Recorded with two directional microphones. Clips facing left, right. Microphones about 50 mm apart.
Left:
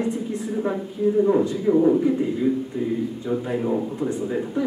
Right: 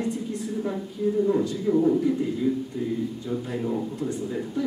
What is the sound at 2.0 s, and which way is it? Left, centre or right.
Speech, left.